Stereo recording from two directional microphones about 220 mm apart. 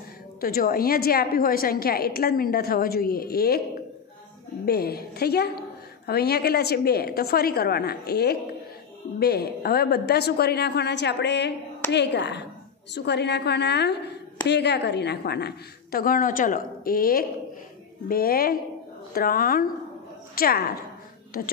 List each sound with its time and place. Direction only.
0.4 s a woman's voice: 40° left (ahead or behind)
4.6 s a woman's voice: 45° left (ahead or behind)